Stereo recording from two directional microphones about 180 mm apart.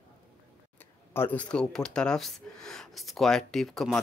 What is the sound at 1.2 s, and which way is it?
Speech, 10° left (ahead or behind).